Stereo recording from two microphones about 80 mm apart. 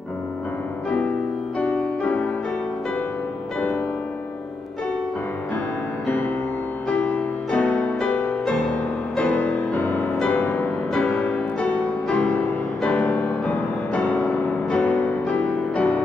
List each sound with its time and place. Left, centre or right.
0.8 s music: centre
6.0 s music: left
6.9 s music: centre
10.9 s music: centre